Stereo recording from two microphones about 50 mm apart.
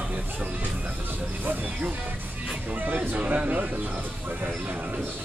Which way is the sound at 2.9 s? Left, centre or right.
Right.